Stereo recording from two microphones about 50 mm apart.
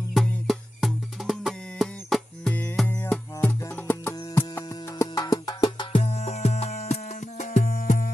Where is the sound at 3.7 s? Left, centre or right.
Left.